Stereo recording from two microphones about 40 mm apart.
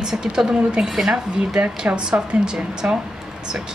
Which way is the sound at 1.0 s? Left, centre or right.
Centre.